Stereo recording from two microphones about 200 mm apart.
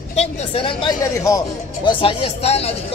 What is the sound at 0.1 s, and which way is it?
Speech, 30° left (ahead or behind).